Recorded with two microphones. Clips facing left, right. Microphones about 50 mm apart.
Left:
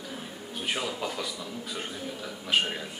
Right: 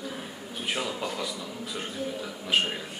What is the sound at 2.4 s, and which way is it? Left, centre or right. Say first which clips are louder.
Speech: even; centre.